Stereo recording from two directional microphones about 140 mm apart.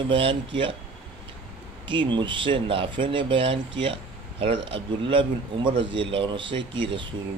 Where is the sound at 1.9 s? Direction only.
35° right (ahead or behind).